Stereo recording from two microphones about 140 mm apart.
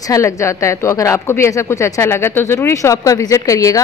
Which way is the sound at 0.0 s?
25° left (ahead or behind).